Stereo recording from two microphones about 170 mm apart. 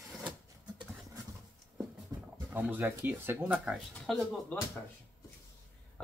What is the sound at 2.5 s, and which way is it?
Speech, 10° right (ahead or behind).